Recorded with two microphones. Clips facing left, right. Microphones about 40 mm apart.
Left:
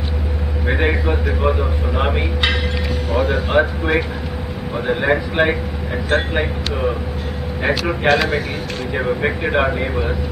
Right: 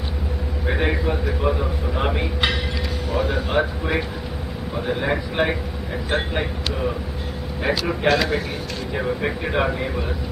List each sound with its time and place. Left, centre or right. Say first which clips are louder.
0.7 s a man's voice: left 3 dB; left
3.1 s speech: left 4 dB; left
3.5 s a man's voice: left 6 dB; left
7.6 s a man's voice: left 3 dB; left